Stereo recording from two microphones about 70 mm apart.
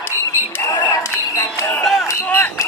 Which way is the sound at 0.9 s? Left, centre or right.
Left.